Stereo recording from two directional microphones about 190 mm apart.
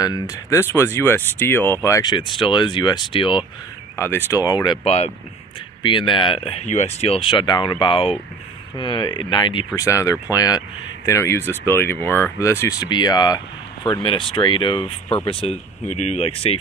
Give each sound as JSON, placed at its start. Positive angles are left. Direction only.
{"t": 0.0, "sound": "speech", "side_deg": 20}
{"t": 3.9, "sound": "speech", "side_deg": 10}
{"t": 4.8, "sound": "speech", "side_deg": 35}